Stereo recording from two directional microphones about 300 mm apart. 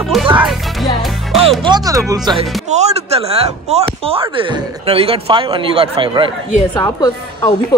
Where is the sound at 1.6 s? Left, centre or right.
Centre.